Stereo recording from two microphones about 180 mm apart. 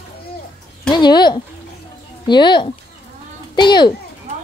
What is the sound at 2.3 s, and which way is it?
Speech, 25° left (ahead or behind).